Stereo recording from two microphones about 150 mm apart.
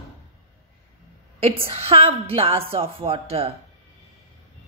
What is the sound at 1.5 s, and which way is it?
A woman's voice, 40° right (ahead or behind).